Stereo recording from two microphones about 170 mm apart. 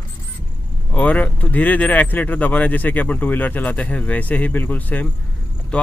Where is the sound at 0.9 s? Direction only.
10° left (ahead or behind).